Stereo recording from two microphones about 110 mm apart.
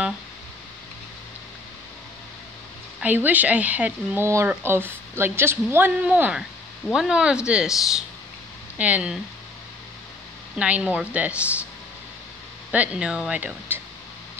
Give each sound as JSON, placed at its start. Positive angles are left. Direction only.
{"t": 3.0, "sound": "speech", "side_deg": -15}
{"t": 10.6, "sound": "speech", "side_deg": -10}
{"t": 12.7, "sound": "speech", "side_deg": -10}